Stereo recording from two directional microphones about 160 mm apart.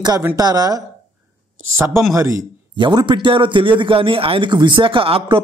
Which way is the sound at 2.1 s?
20° right (ahead or behind).